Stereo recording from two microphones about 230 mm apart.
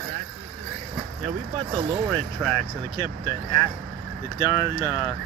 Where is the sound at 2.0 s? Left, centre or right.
Centre.